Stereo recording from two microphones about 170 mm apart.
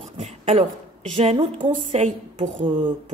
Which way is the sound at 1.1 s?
30° right (ahead or behind).